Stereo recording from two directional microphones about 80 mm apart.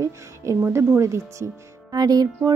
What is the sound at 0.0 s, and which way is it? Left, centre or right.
Speech, right.